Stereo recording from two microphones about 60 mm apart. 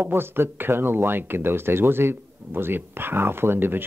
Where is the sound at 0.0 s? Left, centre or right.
Right.